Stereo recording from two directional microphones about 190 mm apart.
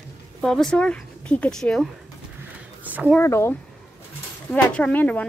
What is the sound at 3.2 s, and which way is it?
Speech, 15° left (ahead or behind).